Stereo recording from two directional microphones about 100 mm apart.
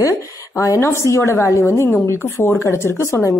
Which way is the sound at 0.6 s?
30° left (ahead or behind).